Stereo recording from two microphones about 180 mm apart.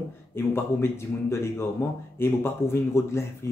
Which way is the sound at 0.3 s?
15° left (ahead or behind).